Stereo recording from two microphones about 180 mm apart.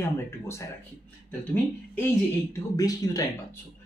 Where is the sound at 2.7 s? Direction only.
20° left (ahead or behind).